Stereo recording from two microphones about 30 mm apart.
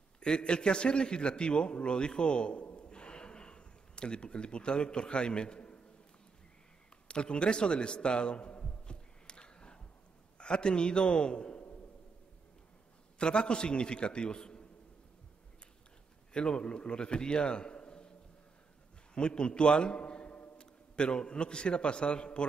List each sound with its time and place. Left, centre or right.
0.2 s a man's voice: left
2.9 s a sound: left
7.1 s a man's voice: left
8.8 s a sound: left
10.3 s a man's voice: left
13.2 s a man's voice: left
16.4 s a man's voice: left
19.1 s a man's voice: left
20.2 s a man's voice: left